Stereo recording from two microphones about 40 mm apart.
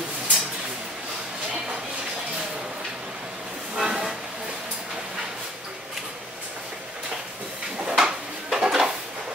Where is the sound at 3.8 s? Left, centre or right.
Right.